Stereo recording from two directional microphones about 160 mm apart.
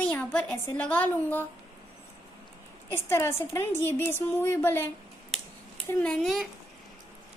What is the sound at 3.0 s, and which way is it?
A woman's voice, 15° left (ahead or behind).